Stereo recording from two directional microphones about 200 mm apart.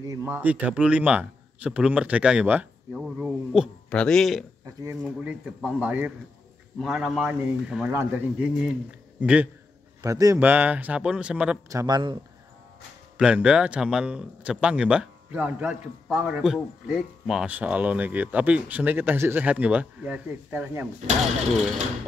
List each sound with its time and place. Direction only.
0.0 s a man's voice: 15° right (ahead or behind)
10.0 s speech: 15° right (ahead or behind)
11.7 s speech: 20° right (ahead or behind)
13.2 s speech: 5° right (ahead or behind)